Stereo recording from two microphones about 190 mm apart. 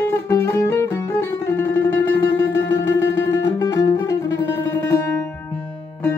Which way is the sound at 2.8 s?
75° left (ahead or behind).